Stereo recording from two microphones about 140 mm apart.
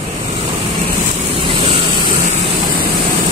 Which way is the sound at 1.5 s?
40° right (ahead or behind).